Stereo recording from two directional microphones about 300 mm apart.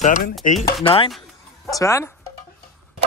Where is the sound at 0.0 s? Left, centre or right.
Left.